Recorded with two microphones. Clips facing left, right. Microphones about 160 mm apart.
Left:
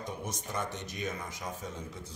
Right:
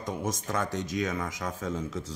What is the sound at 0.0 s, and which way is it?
Speech, 90° right.